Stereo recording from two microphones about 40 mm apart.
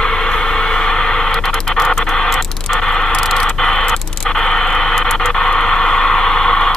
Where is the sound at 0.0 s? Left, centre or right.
Centre.